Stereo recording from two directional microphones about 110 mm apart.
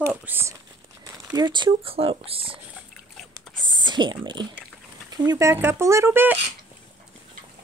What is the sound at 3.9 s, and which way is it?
Speech, 45° right (ahead or behind).